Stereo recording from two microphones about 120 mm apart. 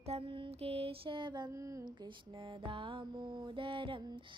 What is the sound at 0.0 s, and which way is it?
Mantra, 55° right (ahead or behind).